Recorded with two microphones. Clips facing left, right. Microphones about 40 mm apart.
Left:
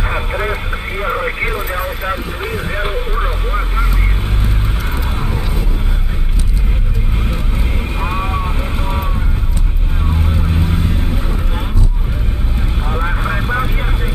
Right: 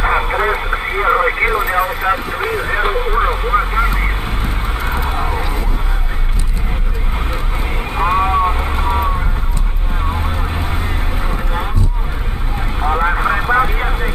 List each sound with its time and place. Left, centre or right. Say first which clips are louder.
0.0 s radio: right 5 dB; centre
3.3 s vehicle: right 6 dB; right
4.7 s neigh: right 3 dB; right
7.9 s vehicle: right 8 dB; centre
10.2 s vehicle: left 2 dB; right
12.8 s vehicle: right 6 dB; right